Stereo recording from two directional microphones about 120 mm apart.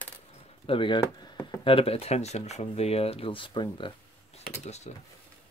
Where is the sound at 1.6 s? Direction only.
50° left (ahead or behind).